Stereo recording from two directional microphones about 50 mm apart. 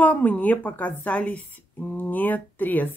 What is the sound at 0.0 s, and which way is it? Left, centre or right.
A woman's voice, left.